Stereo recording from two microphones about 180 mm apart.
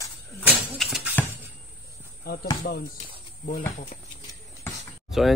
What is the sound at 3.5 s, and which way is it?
Speech, 50° left (ahead or behind).